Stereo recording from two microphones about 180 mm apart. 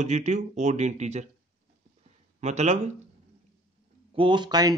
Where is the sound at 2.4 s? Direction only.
40° right (ahead or behind).